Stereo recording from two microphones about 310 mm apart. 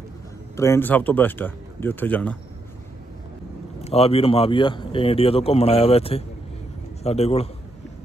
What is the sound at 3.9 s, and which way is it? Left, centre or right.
A man's voice, centre.